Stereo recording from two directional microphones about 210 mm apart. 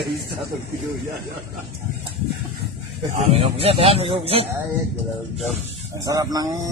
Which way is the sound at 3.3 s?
30° right (ahead or behind).